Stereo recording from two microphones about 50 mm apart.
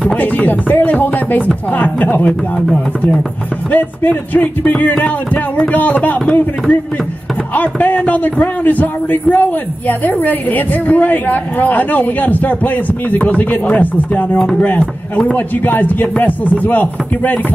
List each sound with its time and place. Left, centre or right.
0.2 s a man's voice: left
3.7 s a man's voice: left
7.5 s a man's voice: left